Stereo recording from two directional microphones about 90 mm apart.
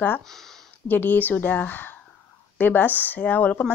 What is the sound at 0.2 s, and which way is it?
Speech, 5° left (ahead or behind).